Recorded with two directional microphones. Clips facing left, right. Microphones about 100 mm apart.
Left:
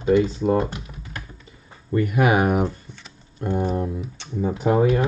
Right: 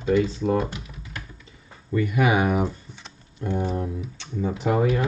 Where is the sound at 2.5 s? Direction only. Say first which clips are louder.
Left 2 dB; centre (ahead or behind).